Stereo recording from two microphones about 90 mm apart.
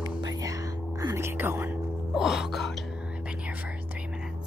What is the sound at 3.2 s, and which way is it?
Whispering, 15° right (ahead or behind).